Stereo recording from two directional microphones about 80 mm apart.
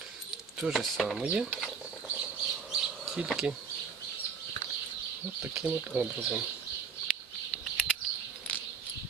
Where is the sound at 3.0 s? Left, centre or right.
Centre.